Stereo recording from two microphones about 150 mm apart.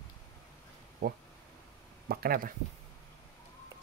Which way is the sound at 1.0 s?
75° right (ahead or behind).